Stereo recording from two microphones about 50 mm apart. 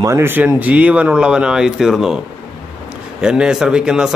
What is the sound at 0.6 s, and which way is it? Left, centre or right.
Speech, right.